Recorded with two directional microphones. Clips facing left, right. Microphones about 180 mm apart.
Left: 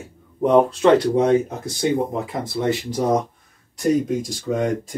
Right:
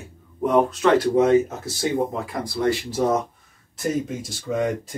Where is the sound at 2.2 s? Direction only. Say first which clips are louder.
Even; 20° left (ahead or behind).